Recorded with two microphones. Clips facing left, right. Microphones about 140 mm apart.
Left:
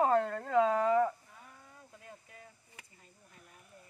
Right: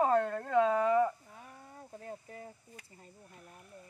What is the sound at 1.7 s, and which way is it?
Speech, 35° right (ahead or behind).